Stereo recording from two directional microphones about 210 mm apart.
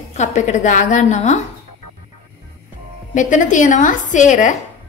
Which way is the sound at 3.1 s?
35° left (ahead or behind).